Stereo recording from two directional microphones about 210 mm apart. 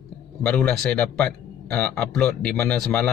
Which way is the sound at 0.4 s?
5° left (ahead or behind).